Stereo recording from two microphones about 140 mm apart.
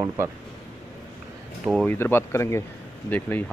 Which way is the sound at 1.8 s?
15° left (ahead or behind).